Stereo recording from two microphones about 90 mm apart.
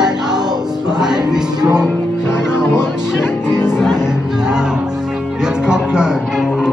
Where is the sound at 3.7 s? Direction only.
5° right (ahead or behind).